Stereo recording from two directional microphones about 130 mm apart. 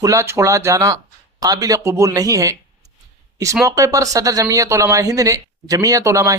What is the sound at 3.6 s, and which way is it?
Speech, 25° right (ahead or behind).